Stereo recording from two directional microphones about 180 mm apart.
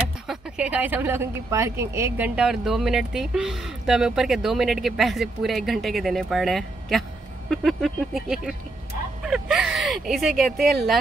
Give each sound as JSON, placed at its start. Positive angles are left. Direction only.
{"t": 0.3, "sound": "speech", "side_deg": -5}